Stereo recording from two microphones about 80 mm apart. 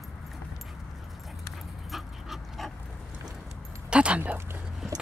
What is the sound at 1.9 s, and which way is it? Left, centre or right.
Dog, centre.